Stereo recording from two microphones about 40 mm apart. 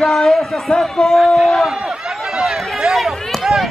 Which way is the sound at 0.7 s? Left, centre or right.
Centre.